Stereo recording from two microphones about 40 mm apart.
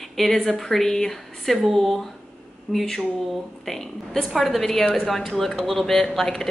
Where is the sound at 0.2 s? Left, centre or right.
Centre.